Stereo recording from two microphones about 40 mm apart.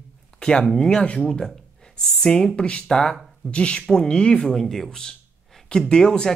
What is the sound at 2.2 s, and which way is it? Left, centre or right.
Speech, centre.